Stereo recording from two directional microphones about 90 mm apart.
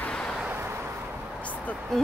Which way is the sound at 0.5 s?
25° right (ahead or behind).